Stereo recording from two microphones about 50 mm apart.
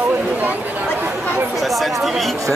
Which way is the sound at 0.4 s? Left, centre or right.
Right.